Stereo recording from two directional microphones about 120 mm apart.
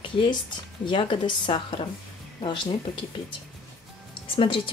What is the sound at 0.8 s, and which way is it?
A woman's voice, 40° left (ahead or behind).